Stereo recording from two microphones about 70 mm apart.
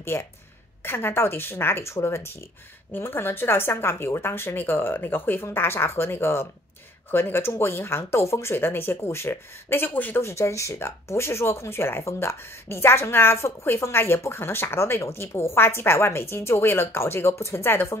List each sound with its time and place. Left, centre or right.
0.1 s speech: left
10.2 s speech: left